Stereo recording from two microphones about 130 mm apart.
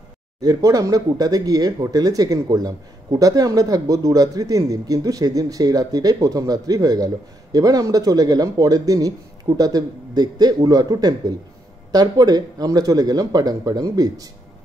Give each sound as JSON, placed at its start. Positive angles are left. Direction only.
{"t": 0.4, "sound": "speech", "side_deg": -25}